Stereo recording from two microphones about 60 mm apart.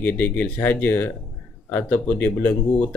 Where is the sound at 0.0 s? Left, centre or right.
Left.